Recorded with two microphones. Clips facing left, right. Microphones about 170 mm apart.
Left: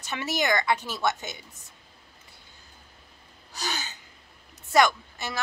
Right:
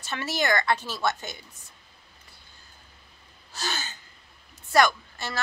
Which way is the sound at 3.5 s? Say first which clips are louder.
Even; 15° left (ahead or behind).